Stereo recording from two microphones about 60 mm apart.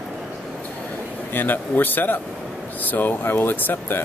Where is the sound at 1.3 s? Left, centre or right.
Left.